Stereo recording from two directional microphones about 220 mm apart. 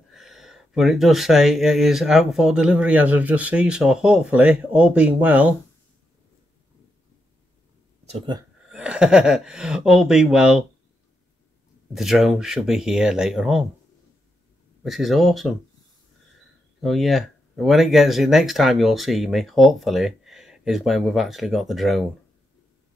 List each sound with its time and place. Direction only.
0.1 s speech: centre (ahead or behind)
8.0 s speech: 30° right (ahead or behind)
8.6 s speech: 5° right (ahead or behind)
11.9 s speech: centre (ahead or behind)
14.8 s speech: centre (ahead or behind)
16.8 s speech: centre (ahead or behind)